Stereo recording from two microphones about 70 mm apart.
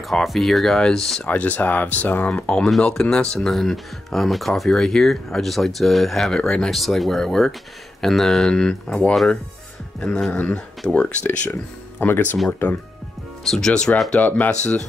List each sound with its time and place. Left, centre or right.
0.1 s speech: centre
1.2 s speech: left
2.3 s speech: centre
10.3 s speech: left
10.8 s speech: centre
12.0 s speech: left
13.4 s speech: centre